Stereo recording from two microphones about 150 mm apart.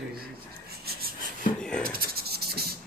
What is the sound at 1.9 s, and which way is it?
Rub, 90° right.